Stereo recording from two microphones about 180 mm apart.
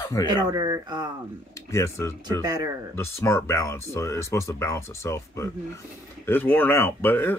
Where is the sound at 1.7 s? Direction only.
15° left (ahead or behind).